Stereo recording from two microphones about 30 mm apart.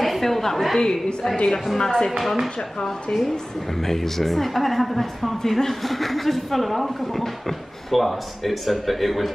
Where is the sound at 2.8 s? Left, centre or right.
Centre.